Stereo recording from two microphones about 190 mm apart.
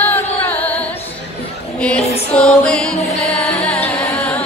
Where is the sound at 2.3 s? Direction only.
5° left (ahead or behind).